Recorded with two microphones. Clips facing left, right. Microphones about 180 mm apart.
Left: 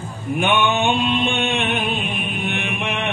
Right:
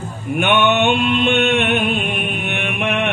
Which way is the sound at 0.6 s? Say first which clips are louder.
Right 4 dB; 70° right (ahead or behind).